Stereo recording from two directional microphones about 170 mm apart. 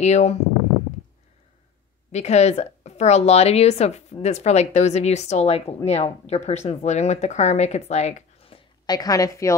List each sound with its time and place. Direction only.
0.0 s a woman's voice: 40° left (ahead or behind)
2.1 s a woman's voice: 40° left (ahead or behind)
8.8 s a woman's voice: 20° left (ahead or behind)